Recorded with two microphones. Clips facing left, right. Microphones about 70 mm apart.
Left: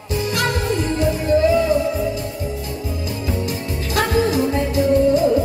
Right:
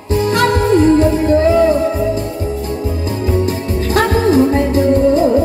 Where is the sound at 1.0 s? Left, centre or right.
Right.